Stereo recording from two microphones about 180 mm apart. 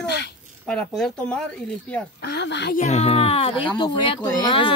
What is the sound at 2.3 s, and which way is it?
Speech, 70° left (ahead or behind).